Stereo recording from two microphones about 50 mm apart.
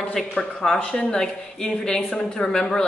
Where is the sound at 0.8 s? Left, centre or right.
Centre.